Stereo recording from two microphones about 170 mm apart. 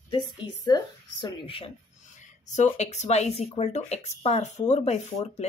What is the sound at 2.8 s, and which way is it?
Speech, 40° left (ahead or behind).